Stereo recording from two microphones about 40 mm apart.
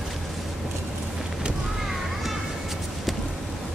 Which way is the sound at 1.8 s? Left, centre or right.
Centre.